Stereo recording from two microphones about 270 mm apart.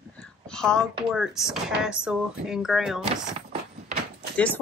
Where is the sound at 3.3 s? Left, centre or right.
Right.